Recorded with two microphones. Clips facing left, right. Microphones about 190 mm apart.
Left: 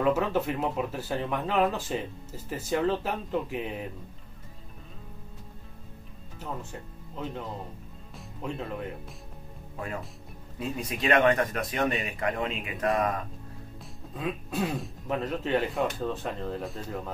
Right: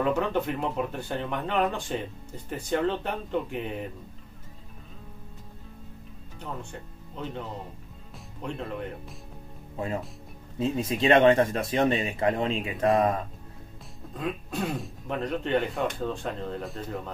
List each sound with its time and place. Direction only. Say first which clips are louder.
0.0 s speech: even; 5° left (ahead or behind)
6.4 s speech: even; 5° left (ahead or behind)
10.6 s speech: right 5 dB; 25° right (ahead or behind)
14.1 s speech: even; centre (ahead or behind)